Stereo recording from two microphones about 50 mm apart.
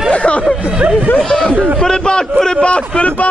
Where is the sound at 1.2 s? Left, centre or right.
Centre.